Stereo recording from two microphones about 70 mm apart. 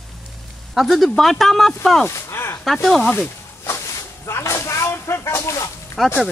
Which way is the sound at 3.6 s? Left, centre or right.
Left.